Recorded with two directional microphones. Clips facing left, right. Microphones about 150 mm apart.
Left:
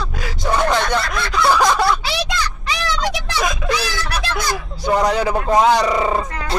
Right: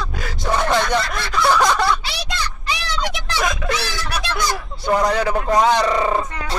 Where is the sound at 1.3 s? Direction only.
5° left (ahead or behind).